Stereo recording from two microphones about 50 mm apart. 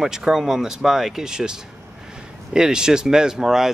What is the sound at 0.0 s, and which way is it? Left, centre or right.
Speech, centre.